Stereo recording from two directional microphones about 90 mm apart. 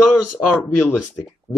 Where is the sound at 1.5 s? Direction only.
20° left (ahead or behind).